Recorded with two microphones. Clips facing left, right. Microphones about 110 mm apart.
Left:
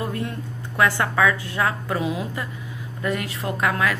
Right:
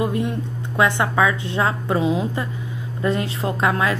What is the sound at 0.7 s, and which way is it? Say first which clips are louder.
A woman's voice: right 2 dB; 20° right (ahead or behind).